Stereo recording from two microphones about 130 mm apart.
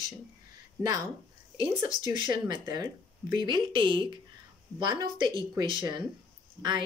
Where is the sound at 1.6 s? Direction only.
40° right (ahead or behind).